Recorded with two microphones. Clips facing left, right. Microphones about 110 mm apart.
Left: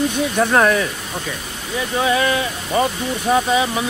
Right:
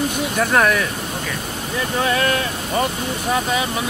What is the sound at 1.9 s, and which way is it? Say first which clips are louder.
Speech: left 2 dB; 15° left (ahead or behind).